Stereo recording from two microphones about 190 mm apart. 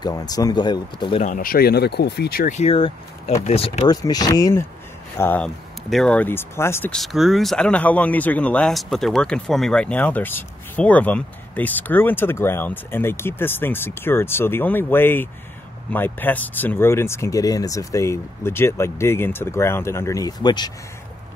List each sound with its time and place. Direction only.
0.0 s speech: 20° left (ahead or behind)
1.2 s speech: 45° left (ahead or behind)
2.5 s speech: 30° left (ahead or behind)